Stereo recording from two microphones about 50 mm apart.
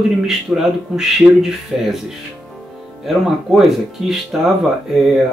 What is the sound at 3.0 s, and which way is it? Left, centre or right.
Speech, centre.